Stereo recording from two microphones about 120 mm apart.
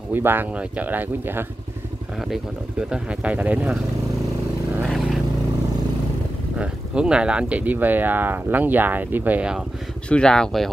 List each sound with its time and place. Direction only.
0.1 s speech: 15° right (ahead or behind)
2.9 s speech: 10° right (ahead or behind)
4.8 s vehicle: centre (ahead or behind)
6.6 s speech: 10° right (ahead or behind)
10.0 s speech: 5° left (ahead or behind)